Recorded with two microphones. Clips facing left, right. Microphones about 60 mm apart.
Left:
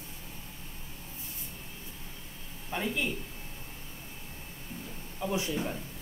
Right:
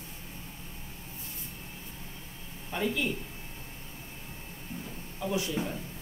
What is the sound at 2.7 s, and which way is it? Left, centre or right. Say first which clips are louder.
Speech: right 2 dB; centre.